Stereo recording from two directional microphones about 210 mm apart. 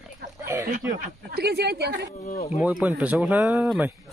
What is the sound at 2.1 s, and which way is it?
Speech, 35° left (ahead or behind).